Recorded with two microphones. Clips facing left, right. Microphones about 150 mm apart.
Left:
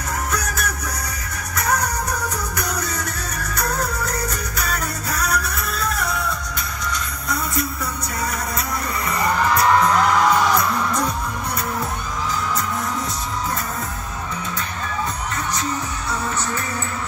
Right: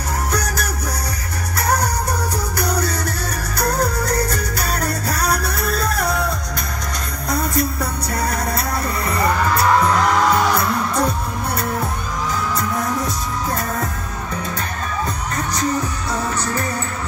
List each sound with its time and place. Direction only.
0.3 s music: 35° right (ahead or behind)